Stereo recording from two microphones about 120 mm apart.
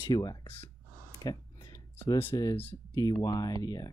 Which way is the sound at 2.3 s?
35° left (ahead or behind).